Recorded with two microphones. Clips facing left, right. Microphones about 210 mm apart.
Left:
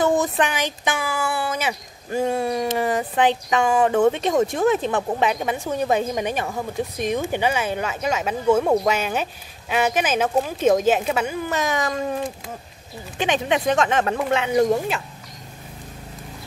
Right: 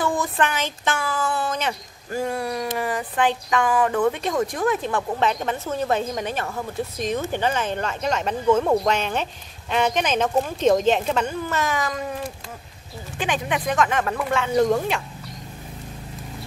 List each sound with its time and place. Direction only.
0.0 s speech: 20° left (ahead or behind)
2.0 s speech: 20° left (ahead or behind)
5.3 s a woman's voice: 10° left (ahead or behind)